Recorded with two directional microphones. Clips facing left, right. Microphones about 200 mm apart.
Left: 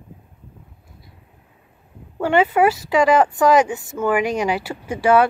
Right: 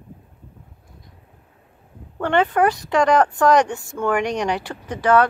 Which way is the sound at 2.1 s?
5° left (ahead or behind).